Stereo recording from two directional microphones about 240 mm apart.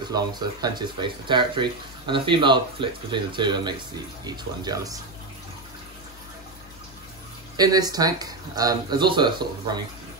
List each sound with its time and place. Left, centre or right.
0.1 s speech: centre
7.5 s speech: centre